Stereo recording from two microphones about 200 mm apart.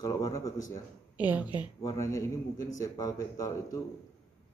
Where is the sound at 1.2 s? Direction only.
10° right (ahead or behind).